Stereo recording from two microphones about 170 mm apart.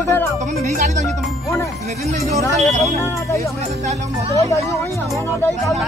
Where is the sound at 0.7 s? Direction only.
45° right (ahead or behind).